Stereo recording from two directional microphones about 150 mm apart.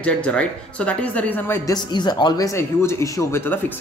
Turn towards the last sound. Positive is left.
turn(degrees=15)  # may be behind; listen again after turning